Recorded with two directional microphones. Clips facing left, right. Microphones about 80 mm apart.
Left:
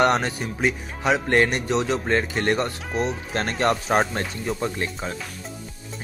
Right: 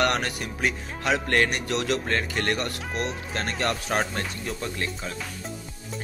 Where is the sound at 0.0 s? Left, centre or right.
Left.